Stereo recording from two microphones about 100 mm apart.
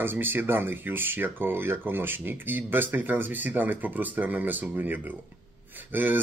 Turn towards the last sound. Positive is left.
turn(degrees=-20)  # may be behind; listen again after turning